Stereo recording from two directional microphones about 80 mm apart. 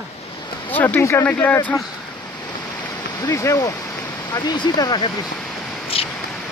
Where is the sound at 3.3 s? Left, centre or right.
Left.